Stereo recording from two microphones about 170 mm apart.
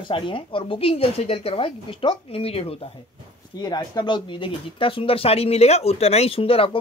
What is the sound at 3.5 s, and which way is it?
Speech, 25° left (ahead or behind).